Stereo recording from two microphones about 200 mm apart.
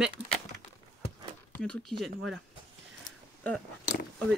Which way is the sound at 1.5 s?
5° left (ahead or behind).